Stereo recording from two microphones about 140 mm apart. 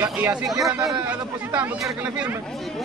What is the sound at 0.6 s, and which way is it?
Speech, 20° right (ahead or behind).